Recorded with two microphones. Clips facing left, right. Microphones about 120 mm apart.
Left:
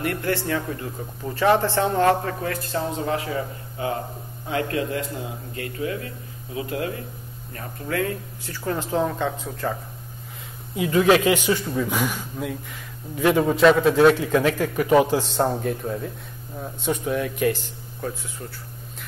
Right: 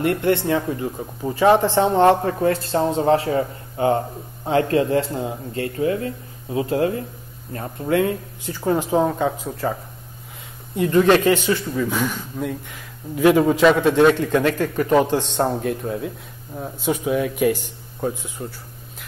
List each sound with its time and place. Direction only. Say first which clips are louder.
0.0 s a man's voice: right 6 dB; 25° right (ahead or behind); by 12.2 s 10° left (ahead or behind)
12.4 s a man's voice: right 3 dB; centre (ahead or behind); by 18.5 s 20° right (ahead or behind)